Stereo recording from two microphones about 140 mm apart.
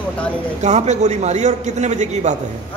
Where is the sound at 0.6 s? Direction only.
55° right (ahead or behind).